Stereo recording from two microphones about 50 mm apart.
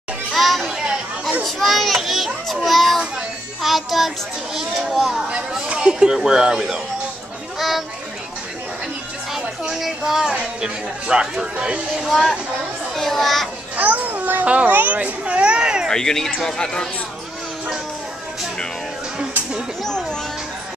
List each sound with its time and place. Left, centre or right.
0.3 s children playing: centre
3.6 s a child's voice: centre
5.7 s speech: centre
9.3 s speech: centre
10.3 s speech: right
12.0 s a child's voice: centre
13.7 s babbling: right
14.5 s speech: right; by 15.9 s centre
15.9 s speech: centre
19.8 s music: centre